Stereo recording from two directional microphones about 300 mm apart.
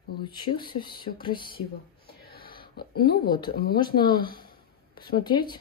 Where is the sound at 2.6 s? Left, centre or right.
Left.